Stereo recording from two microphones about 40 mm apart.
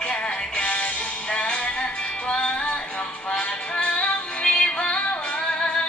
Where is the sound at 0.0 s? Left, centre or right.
Left.